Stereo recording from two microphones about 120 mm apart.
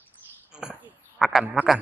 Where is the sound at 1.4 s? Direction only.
5° right (ahead or behind).